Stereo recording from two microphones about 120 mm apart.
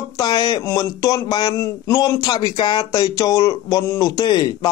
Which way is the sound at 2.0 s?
35° left (ahead or behind).